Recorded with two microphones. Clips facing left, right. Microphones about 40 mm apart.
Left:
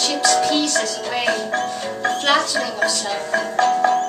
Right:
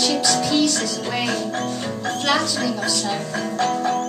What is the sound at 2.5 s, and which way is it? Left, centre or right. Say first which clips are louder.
Music: left 3 dB; left.